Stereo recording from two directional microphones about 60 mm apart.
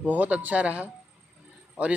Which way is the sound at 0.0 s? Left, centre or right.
Right.